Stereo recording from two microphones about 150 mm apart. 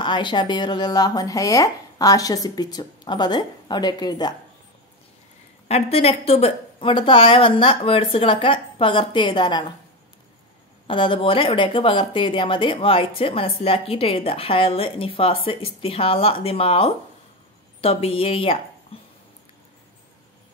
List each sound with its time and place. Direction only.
0.0 s speech: 30° left (ahead or behind)
5.7 s speech: 40° left (ahead or behind)
10.9 s speech: 35° left (ahead or behind)
18.9 s dog: 40° left (ahead or behind)